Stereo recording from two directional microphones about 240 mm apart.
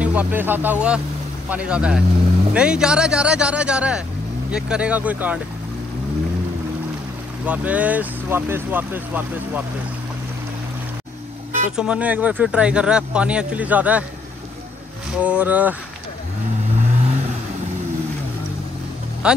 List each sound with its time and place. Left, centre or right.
0.0 s speech: centre
7.4 s speech: centre
11.7 s speech: centre
15.1 s speech: centre
16.7 s vehicle: right
19.2 s speech: centre